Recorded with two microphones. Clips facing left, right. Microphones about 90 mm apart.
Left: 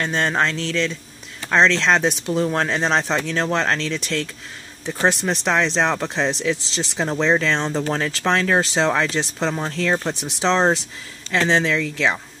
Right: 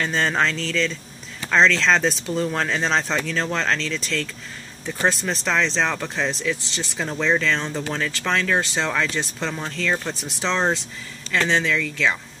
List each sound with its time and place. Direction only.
0.0 s speech: 10° left (ahead or behind)
1.8 s speech: 15° left (ahead or behind)
3.8 s speech: 55° left (ahead or behind)
4.8 s speech: 25° left (ahead or behind)